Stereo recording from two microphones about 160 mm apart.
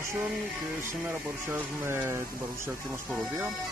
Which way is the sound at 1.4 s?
15° right (ahead or behind).